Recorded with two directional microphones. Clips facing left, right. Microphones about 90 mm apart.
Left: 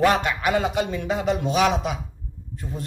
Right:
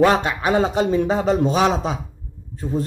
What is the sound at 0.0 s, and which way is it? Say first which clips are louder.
A man's voice: right 3 dB; 30° right (ahead or behind).